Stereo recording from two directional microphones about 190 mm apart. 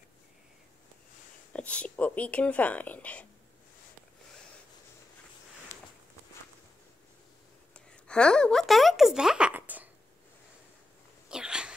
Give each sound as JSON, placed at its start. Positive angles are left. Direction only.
{"t": 1.5, "sound": "speech", "side_deg": 5}
{"t": 7.7, "sound": "a sound", "side_deg": 5}
{"t": 11.2, "sound": "sneeze", "side_deg": -5}